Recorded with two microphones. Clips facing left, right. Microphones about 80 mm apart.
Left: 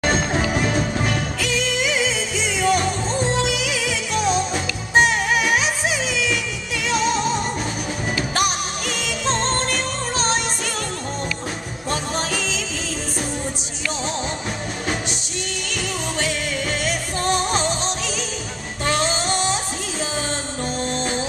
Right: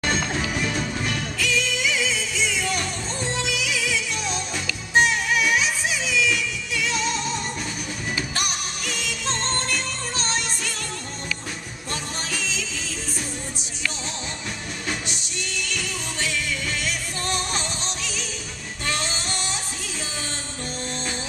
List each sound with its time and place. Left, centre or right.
0.0 s music: left
5.6 s music: left
7.1 s music: left
8.8 s music: left
12.3 s music: left
16.8 s music: left
18.9 s music: left